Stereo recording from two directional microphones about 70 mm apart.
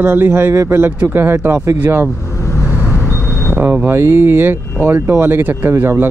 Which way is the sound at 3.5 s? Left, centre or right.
Right.